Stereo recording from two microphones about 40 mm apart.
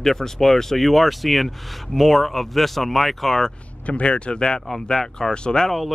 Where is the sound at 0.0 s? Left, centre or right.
Centre.